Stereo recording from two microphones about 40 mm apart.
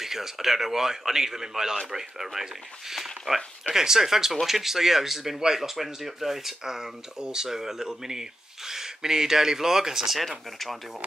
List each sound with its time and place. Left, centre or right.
0.0 s speech: centre